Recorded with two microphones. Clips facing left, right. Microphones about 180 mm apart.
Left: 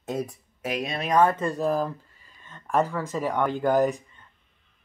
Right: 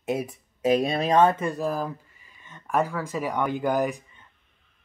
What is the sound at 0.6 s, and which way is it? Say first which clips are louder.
Speech: right 7 dB; 35° right (ahead or behind).